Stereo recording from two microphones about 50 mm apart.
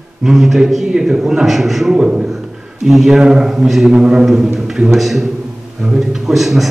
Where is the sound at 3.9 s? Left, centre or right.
Centre.